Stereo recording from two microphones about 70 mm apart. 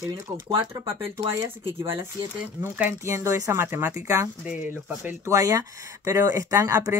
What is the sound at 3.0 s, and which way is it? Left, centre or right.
Speech, right.